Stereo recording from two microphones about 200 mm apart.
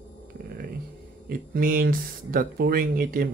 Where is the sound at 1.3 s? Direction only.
45° right (ahead or behind).